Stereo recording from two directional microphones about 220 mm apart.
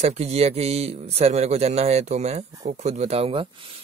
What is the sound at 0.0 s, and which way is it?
Speech, 30° right (ahead or behind).